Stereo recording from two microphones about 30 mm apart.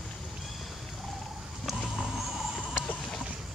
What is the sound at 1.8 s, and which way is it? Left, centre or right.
Vehicle, centre.